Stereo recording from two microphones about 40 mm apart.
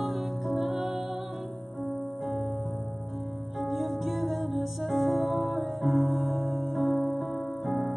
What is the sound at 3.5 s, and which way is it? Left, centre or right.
Music, centre.